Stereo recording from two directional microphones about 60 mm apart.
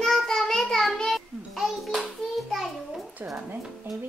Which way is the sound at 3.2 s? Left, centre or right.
Right.